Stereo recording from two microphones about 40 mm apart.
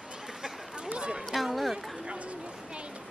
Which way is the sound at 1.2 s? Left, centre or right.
Centre.